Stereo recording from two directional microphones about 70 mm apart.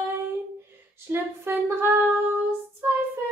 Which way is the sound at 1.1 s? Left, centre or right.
Right.